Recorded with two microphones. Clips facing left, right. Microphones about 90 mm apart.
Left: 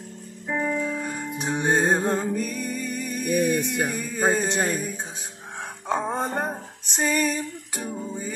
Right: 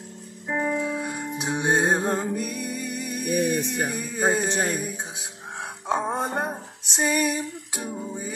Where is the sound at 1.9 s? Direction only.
15° right (ahead or behind).